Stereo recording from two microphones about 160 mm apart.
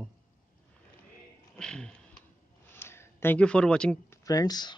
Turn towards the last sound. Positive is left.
turn(degrees=25)  # may be behind; listen again after turning